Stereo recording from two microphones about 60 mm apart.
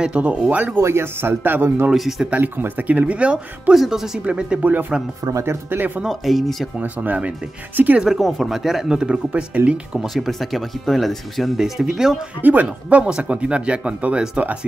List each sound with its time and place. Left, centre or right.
0.0 s speech: right
0.7 s speech: right
1.9 s speech: centre
2.3 s speech: right
3.7 s speech: centre
4.2 s speech: centre
4.6 s speech: right
5.4 s speech: right
6.0 s speech: centre
6.8 s speech: right
8.0 s speech: centre
9.9 s speech: centre
12.4 s speech: right